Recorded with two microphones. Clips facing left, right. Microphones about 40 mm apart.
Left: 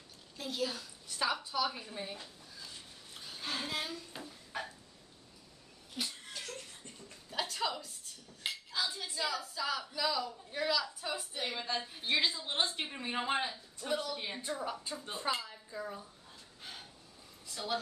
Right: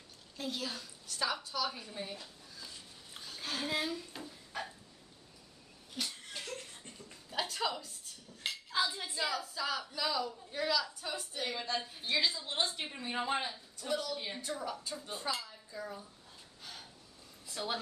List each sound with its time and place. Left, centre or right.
0.4 s a woman's voice: centre
1.0 s a woman's voice: centre
3.2 s a sound: centre
3.6 s a woman's voice: centre
4.1 s a sound: centre
6.0 s laughter: centre
6.3 s a sound: right
7.2 s a sound: centre
8.4 s dishes: centre
8.7 s dishes: right
9.2 s a woman's voice: centre
12.5 s speech: left
15.7 s a woman's voice: centre